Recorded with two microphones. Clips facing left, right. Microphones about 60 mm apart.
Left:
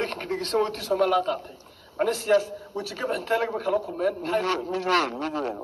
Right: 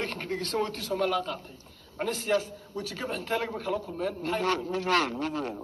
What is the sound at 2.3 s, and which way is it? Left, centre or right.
A man's voice, centre.